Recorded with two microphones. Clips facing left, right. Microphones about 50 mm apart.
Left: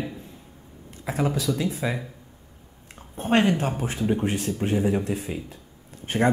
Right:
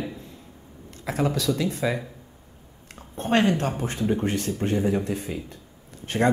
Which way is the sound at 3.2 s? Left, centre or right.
Centre.